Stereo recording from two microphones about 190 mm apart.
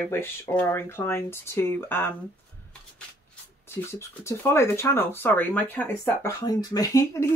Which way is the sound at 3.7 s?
15° left (ahead or behind).